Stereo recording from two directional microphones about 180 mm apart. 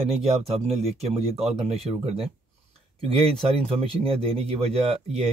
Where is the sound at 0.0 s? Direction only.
35° right (ahead or behind).